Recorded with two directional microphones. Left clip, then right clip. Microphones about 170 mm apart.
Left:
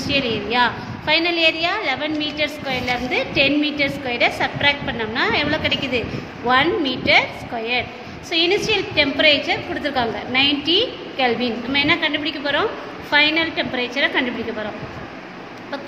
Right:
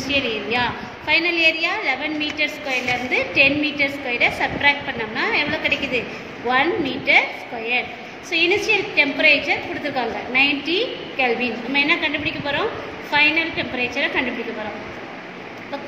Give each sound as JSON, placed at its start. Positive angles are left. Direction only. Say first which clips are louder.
{"t": 0.0, "sound": "a woman's voice", "louder": "left 1 dB", "side_deg": 65}